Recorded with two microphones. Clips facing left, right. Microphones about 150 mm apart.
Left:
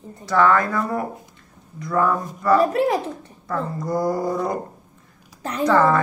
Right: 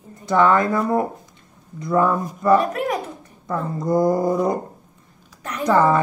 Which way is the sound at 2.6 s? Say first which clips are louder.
Left 4 dB; 30° left (ahead or behind).